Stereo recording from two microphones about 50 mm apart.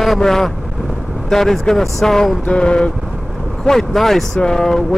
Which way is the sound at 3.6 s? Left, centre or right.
Centre.